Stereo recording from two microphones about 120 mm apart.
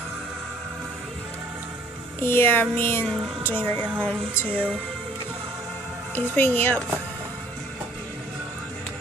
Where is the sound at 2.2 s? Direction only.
20° left (ahead or behind).